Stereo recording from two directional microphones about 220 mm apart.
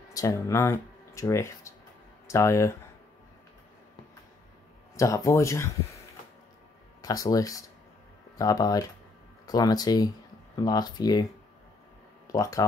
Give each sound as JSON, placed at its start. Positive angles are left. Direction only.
{"t": 0.1, "sound": "speech", "side_deg": 15}
{"t": 4.9, "sound": "speech", "side_deg": 15}
{"t": 7.0, "sound": "speech", "side_deg": 15}
{"t": 12.3, "sound": "speech", "side_deg": 15}